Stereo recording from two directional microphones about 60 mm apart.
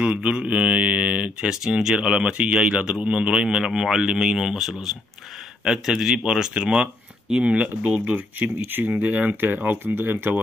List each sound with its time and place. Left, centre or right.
0.0 s speech: centre
1.5 s speech: centre; by 10.3 s right